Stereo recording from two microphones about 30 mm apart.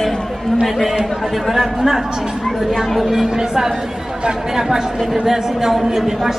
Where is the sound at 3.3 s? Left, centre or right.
Centre.